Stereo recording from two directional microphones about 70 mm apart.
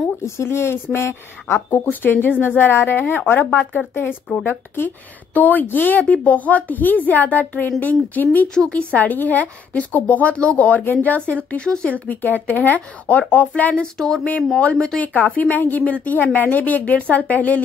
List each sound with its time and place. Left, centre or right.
0.2 s a woman's voice: left
11.5 s speech: centre
12.1 s a woman's voice: left
13.9 s speech: centre
14.6 s a woman's voice: centre